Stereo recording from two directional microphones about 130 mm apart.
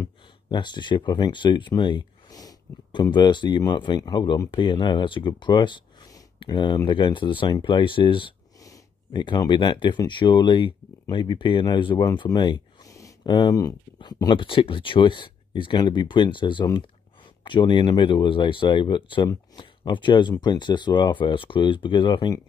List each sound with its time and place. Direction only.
0.5 s speech: 35° left (ahead or behind)